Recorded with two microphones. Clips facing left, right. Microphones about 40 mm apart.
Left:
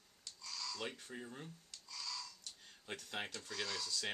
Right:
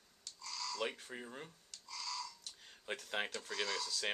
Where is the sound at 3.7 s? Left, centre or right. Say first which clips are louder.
Right 3 dB; centre.